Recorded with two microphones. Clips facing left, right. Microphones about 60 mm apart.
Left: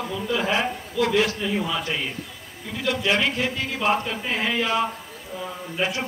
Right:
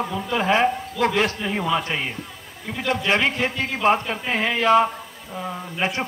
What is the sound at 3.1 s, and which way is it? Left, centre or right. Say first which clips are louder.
Speech: right 2 dB; right.